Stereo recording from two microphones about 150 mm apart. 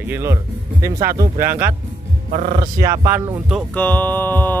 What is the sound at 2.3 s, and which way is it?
Speech, 45° right (ahead or behind).